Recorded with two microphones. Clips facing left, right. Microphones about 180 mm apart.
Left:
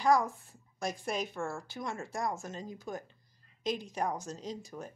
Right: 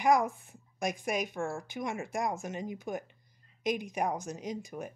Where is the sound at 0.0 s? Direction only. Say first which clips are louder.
Right 1 dB; 20° right (ahead or behind).